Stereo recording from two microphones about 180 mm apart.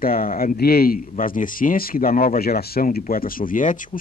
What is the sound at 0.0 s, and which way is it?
Speech, 55° left (ahead or behind).